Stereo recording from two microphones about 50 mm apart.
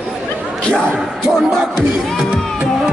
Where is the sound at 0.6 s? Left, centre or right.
Centre.